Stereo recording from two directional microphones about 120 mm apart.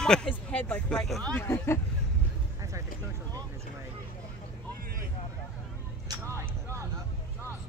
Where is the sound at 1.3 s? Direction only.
20° left (ahead or behind).